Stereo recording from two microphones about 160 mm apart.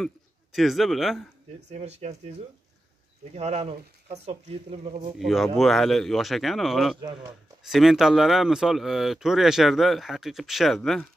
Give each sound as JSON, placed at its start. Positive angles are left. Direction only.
{"t": 0.0, "sound": "a man's voice", "side_deg": 0}
{"t": 1.7, "sound": "speech", "side_deg": -45}
{"t": 3.3, "sound": "speech", "side_deg": -40}
{"t": 5.2, "sound": "speech", "side_deg": 0}
{"t": 7.0, "sound": "speech", "side_deg": -25}
{"t": 7.6, "sound": "speech", "side_deg": 0}